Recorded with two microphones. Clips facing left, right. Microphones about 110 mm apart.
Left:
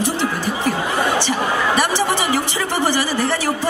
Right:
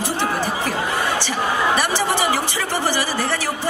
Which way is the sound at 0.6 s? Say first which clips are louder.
Left 3 dB; 20° left (ahead or behind).